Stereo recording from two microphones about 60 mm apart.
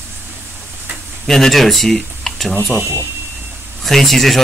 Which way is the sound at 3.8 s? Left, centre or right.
Centre.